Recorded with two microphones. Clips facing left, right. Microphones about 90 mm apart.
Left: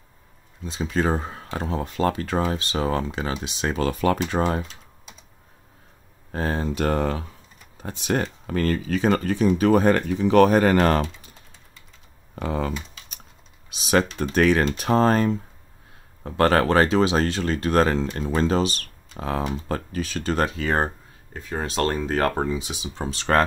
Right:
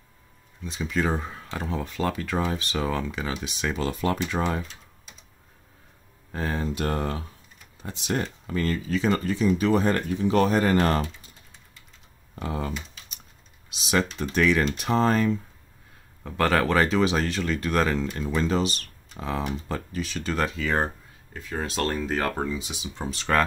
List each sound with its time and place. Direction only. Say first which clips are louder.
0.7 s speech: left 3 dB; 35° left (ahead or behind)
3.6 s speech: left 4 dB; 55° left (ahead or behind)
4.3 s speech: left 4 dB; 40° left (ahead or behind)
6.3 s speech: left 3 dB; 45° left (ahead or behind)
6.9 s speech: left 7 dB; 90° left
7.7 s speech: left 4 dB; 50° left (ahead or behind); by 11.1 s 80° left
12.4 s speech: left 4 dB; 75° left (ahead or behind)
13.9 s speech: left 4 dB; 55° left (ahead or behind)
22.5 s speech: left 4 dB; 75° left (ahead or behind)